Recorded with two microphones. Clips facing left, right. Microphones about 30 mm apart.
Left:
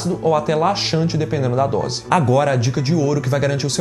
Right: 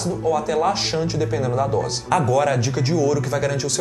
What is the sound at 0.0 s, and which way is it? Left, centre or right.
Speech, left.